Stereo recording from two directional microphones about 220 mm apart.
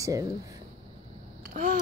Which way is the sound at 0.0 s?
15° right (ahead or behind).